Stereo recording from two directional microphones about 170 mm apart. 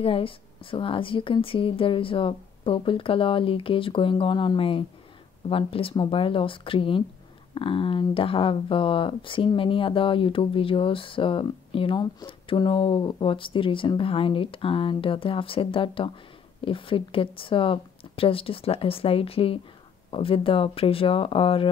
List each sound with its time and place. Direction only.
0.0 s speech: 30° left (ahead or behind)